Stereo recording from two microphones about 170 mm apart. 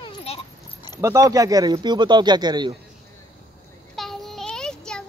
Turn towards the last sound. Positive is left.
turn(degrees=5)  # may be behind; listen again after turning